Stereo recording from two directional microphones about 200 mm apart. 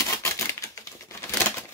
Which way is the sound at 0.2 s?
15° left (ahead or behind).